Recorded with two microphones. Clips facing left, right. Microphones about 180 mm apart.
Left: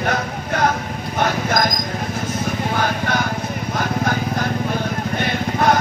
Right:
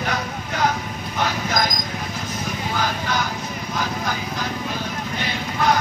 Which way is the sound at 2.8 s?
55° left (ahead or behind).